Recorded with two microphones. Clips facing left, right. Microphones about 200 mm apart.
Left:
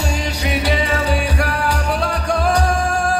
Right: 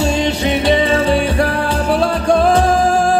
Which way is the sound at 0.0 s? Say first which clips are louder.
Right 7 dB; 25° right (ahead or behind).